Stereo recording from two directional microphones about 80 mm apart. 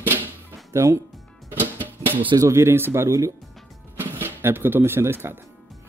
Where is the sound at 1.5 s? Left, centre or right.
Right.